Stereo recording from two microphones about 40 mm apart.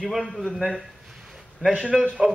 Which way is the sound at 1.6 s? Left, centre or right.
Right.